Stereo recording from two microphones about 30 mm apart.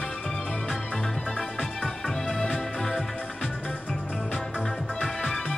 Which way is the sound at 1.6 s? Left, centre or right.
Centre.